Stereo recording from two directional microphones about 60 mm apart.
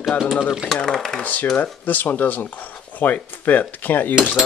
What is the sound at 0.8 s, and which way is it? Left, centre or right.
Speech, centre.